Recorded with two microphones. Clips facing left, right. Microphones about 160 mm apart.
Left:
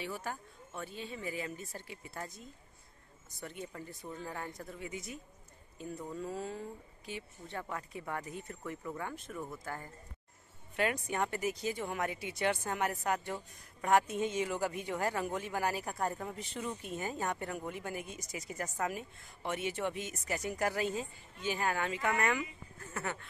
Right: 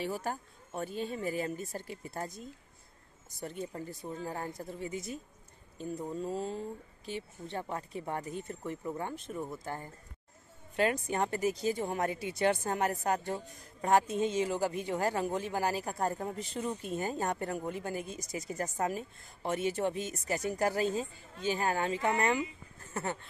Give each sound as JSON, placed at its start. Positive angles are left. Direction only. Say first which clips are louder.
{"t": 0.0, "sound": "speech", "louder": "right 5 dB", "side_deg": -40}